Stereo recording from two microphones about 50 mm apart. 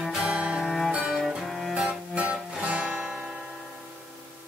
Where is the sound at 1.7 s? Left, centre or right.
Centre.